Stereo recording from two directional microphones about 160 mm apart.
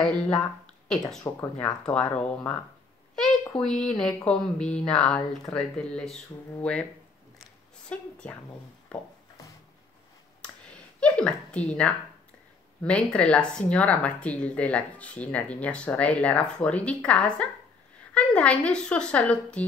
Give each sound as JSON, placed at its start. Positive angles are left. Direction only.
{"t": 1.2, "sound": "speech", "side_deg": 15}
{"t": 1.8, "sound": "a child's voice", "side_deg": 5}
{"t": 7.9, "sound": "speech", "side_deg": 5}
{"t": 8.9, "sound": "a sound", "side_deg": 5}
{"t": 10.4, "sound": "a sound", "side_deg": 5}
{"t": 11.9, "sound": "speech", "side_deg": 10}